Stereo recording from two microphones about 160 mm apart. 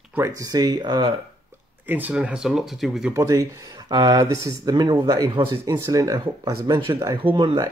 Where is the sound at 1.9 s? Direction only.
10° right (ahead or behind).